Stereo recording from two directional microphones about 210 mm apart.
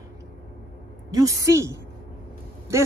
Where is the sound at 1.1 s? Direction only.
15° right (ahead or behind).